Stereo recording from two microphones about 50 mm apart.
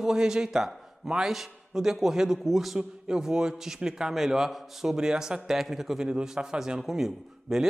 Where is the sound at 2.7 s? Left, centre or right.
Centre.